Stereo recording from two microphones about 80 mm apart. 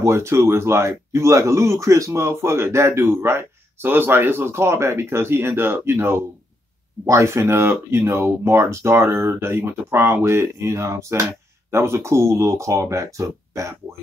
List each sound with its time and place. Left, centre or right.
0.0 s speech: right